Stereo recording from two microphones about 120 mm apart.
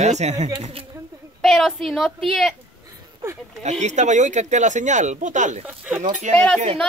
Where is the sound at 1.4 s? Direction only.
Centre (ahead or behind).